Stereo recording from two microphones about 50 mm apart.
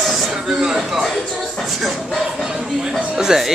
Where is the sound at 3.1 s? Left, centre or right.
Centre.